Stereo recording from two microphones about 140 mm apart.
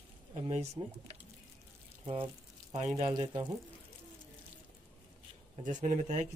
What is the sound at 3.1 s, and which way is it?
Speech, 30° right (ahead or behind).